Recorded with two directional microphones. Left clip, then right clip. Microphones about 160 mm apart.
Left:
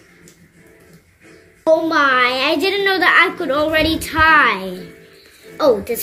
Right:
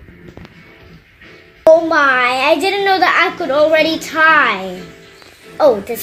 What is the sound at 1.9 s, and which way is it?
A woman's voice, 35° left (ahead or behind).